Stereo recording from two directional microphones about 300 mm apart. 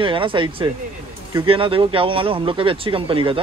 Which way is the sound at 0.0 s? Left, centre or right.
Centre.